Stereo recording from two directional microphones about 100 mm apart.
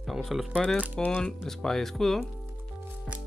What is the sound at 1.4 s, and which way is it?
Speech, 5° left (ahead or behind).